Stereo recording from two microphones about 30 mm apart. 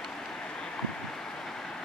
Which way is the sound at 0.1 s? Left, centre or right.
Centre.